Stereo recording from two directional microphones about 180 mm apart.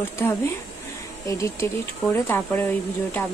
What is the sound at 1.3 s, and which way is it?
Speech, 15° left (ahead or behind).